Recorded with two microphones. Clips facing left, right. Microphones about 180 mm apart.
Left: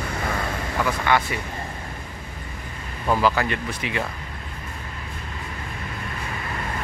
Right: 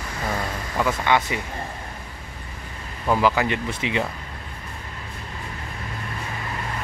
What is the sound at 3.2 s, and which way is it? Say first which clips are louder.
Speech: right 1 dB; 15° right (ahead or behind).